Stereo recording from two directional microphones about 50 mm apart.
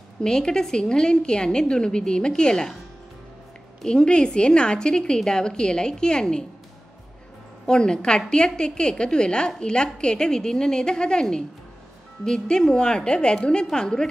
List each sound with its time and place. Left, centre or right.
0.2 s a woman's voice: centre
3.8 s a woman's voice: centre
7.6 s a woman's voice: centre